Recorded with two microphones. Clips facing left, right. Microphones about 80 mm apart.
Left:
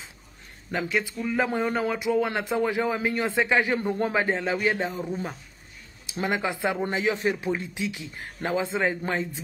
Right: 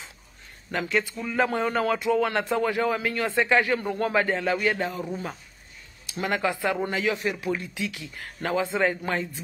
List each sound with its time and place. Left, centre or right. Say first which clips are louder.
0.7 s speech: right 1 dB; centre
6.0 s speech: right 1 dB; left